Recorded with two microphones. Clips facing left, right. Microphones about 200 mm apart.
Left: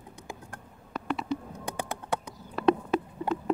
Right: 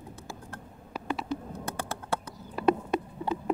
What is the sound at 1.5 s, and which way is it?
Typing, 15° left (ahead or behind).